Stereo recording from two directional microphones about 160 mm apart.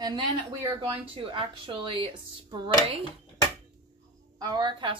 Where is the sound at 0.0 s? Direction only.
30° right (ahead or behind).